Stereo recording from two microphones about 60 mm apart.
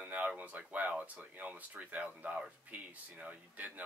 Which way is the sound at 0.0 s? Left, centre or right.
Right.